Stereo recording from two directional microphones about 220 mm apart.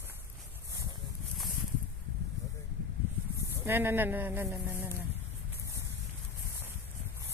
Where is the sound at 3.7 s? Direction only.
10° right (ahead or behind).